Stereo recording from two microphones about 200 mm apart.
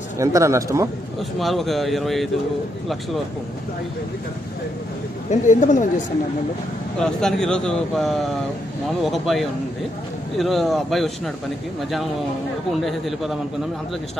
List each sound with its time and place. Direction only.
0.2 s a man's voice: 15° right (ahead or behind)
1.4 s speech: centre (ahead or behind)
5.3 s speech: 40° left (ahead or behind)
7.0 s speech: 5° left (ahead or behind)
12.8 s speech: centre (ahead or behind)